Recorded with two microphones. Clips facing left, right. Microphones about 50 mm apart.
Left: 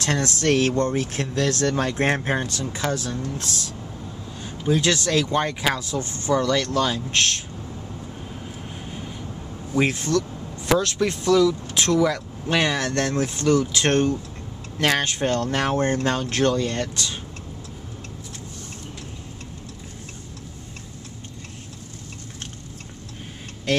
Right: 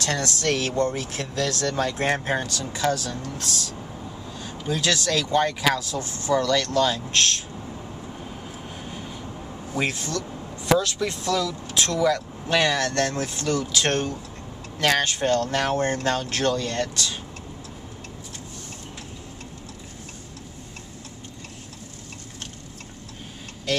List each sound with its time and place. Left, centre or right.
0.0 s speech: left
4.4 s speech: left
8.8 s vehicle: centre
9.8 s speech: left
11.0 s speech: left